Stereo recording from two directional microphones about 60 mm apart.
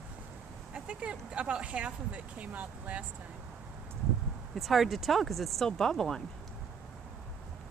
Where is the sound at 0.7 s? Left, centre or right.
Centre.